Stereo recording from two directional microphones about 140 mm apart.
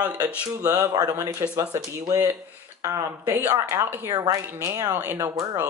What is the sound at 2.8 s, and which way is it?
Speech, 20° right (ahead or behind).